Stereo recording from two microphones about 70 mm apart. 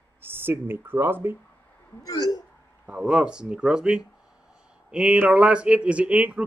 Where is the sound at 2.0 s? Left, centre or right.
Left.